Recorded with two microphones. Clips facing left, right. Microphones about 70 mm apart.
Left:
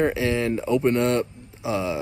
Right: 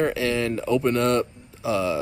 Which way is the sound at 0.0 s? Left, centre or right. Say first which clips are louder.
Left 1 dB; left.